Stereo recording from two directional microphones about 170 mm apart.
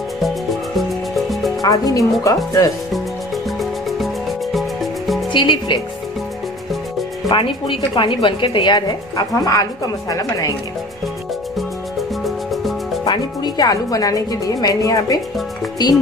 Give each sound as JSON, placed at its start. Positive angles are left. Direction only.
{"t": 0.2, "sound": "music", "side_deg": 0}
{"t": 1.6, "sound": "a woman's voice", "side_deg": 20}
{"t": 3.5, "sound": "music", "side_deg": 0}
{"t": 5.3, "sound": "a woman's voice", "side_deg": 30}
{"t": 7.2, "sound": "a woman's voice", "side_deg": 30}
{"t": 12.3, "sound": "music", "side_deg": 0}
{"t": 13.0, "sound": "a woman's voice", "side_deg": 25}